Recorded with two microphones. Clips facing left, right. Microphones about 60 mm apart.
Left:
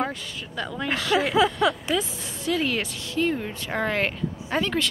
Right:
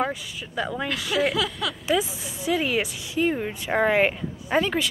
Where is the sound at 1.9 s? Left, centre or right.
Centre.